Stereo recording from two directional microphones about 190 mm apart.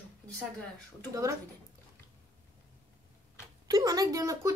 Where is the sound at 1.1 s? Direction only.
15° right (ahead or behind).